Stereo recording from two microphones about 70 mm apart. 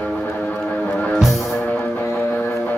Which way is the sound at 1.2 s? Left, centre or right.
Centre.